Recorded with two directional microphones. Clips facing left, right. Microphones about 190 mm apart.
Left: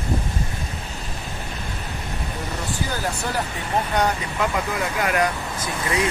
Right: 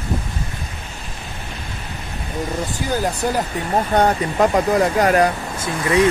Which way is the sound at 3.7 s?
45° right (ahead or behind).